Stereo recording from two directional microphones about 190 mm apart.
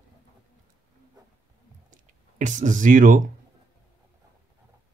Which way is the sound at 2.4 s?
40° right (ahead or behind).